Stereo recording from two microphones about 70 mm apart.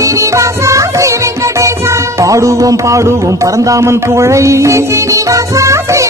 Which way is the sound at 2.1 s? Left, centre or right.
Right.